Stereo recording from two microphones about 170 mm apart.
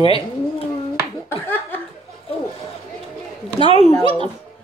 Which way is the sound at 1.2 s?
10° left (ahead or behind).